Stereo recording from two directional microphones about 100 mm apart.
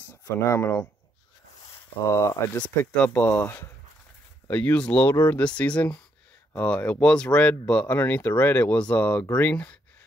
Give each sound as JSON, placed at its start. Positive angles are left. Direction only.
{"t": 0.2, "sound": "speech", "side_deg": 25}
{"t": 2.0, "sound": "speech", "side_deg": 30}
{"t": 2.5, "sound": "speech", "side_deg": 15}